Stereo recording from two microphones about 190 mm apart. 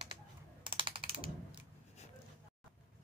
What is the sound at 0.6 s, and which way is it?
Ratchet, 25° right (ahead or behind).